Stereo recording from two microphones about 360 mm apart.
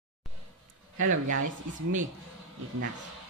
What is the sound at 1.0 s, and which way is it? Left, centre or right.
Speech, right.